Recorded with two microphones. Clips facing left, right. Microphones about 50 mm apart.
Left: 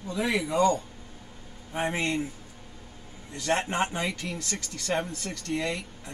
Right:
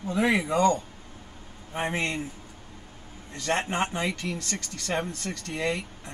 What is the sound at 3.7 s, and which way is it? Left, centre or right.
Speech, centre.